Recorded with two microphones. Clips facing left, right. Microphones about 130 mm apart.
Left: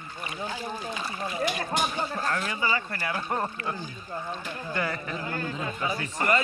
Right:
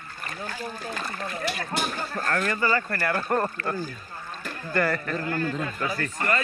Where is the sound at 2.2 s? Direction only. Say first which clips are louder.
Right 7 dB; 45° right (ahead or behind).